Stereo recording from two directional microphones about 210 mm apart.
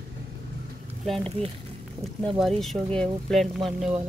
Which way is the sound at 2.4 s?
Centre (ahead or behind).